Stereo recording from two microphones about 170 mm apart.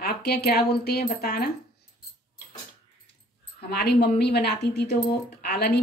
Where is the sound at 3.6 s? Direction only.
70° left (ahead or behind).